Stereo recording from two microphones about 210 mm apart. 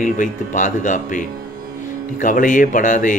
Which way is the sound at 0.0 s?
40° left (ahead or behind).